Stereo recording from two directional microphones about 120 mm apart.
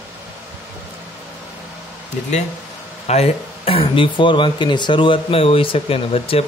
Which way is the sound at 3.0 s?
60° left (ahead or behind).